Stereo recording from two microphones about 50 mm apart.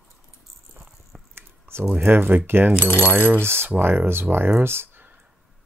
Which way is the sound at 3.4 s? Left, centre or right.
Right.